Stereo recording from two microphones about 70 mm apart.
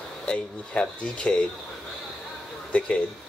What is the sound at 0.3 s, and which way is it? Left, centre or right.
Speech, centre.